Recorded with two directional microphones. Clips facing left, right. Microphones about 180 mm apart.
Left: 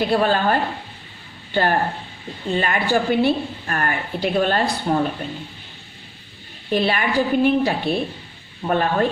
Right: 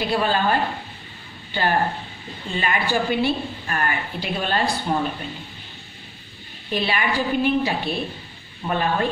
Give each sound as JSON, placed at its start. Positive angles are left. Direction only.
{"t": 0.0, "sound": "a woman's voice", "side_deg": 50}
{"t": 6.7, "sound": "a woman's voice", "side_deg": 50}